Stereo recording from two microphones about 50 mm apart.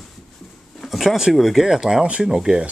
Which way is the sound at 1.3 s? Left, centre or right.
Centre.